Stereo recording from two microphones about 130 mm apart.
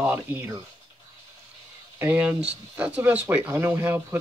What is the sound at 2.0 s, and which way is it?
Speech, 15° right (ahead or behind).